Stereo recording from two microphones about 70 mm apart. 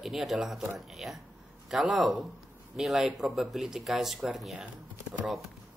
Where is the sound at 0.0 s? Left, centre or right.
Centre.